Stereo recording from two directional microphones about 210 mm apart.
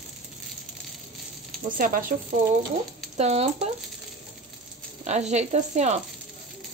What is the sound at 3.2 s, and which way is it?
Speech, 30° right (ahead or behind).